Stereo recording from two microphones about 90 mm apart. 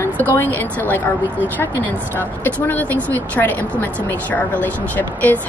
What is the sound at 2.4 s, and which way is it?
A woman's voice, 20° left (ahead or behind).